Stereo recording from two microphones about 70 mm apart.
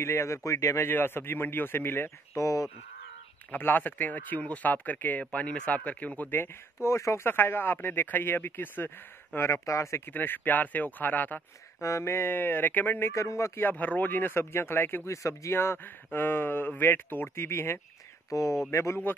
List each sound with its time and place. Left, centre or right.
0.0 s speech: left
0.8 s speech: left
2.3 s speech: left
3.5 s speech: left
6.4 s speech: left
7.2 s speech: left
10.0 s speech: left
11.8 s speech: left
13.1 s speech: left
13.6 s speech: left
18.3 s speech: left